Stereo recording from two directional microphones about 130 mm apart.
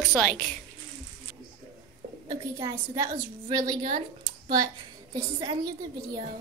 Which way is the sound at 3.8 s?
45° right (ahead or behind).